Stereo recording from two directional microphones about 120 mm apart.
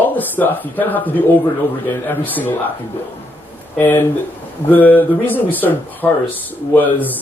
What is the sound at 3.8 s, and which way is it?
Speech, 15° left (ahead or behind).